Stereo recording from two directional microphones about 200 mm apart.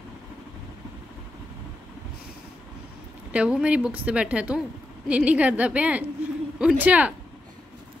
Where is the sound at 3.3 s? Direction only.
5° right (ahead or behind).